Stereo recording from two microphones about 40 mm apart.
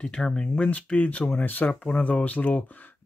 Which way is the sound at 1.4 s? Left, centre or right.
Left.